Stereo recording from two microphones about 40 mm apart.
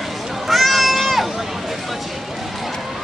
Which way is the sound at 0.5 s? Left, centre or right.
Centre.